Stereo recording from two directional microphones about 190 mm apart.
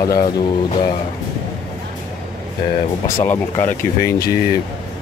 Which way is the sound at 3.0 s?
15° left (ahead or behind).